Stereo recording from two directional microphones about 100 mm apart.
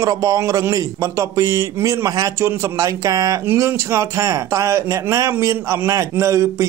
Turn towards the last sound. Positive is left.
turn(degrees=-30)  # may be behind; listen again after turning